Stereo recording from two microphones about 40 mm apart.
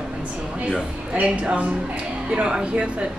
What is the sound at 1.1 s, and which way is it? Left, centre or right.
Speech, right.